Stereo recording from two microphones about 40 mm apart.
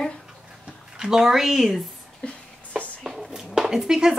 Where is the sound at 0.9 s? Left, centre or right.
Centre.